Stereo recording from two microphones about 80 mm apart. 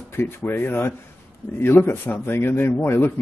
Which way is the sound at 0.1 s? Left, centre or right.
Left.